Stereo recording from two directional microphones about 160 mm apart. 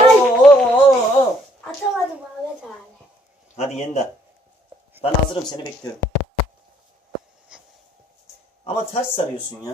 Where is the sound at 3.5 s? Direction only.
45° left (ahead or behind).